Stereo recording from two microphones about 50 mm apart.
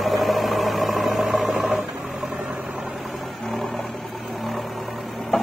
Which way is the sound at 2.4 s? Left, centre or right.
Right.